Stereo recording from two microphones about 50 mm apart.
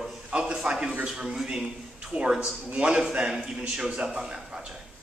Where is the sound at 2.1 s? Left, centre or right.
Right; by 4.4 s centre.